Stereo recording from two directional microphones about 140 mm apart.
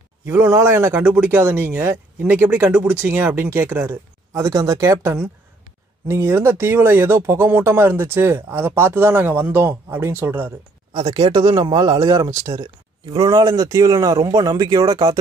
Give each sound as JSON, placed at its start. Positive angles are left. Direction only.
{"t": 0.2, "sound": "speech", "side_deg": -20}
{"t": 11.1, "sound": "speech", "side_deg": -30}